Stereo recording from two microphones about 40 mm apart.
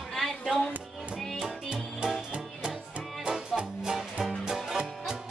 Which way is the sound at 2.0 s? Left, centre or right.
Right.